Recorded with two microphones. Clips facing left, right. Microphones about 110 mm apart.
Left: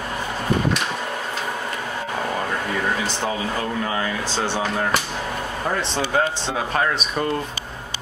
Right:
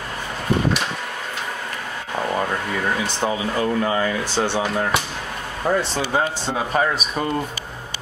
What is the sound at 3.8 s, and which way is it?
Speech, 15° right (ahead or behind).